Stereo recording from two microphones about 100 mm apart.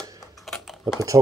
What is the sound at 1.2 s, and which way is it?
Speech, 35° right (ahead or behind).